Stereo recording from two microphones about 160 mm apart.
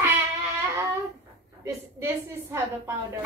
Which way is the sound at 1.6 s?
15° right (ahead or behind).